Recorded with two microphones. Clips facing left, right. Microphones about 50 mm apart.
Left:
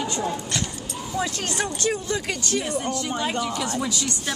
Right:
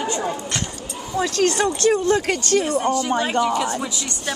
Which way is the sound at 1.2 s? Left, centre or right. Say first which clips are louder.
Right 13 dB; right.